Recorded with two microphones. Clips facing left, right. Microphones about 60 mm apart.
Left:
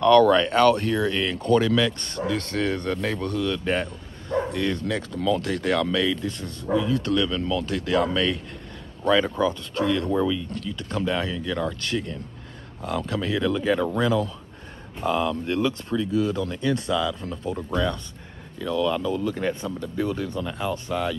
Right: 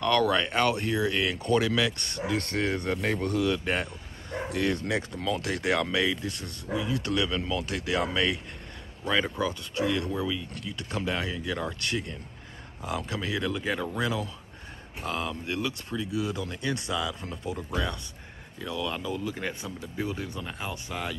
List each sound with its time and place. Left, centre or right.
0.0 s speech: centre; by 3.4 s right
3.4 s speech: centre
17.6 s speech: centre